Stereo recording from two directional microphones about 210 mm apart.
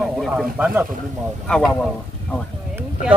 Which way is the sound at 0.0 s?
Centre (ahead or behind).